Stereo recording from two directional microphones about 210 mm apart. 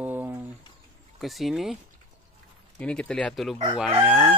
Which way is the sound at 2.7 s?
5° left (ahead or behind).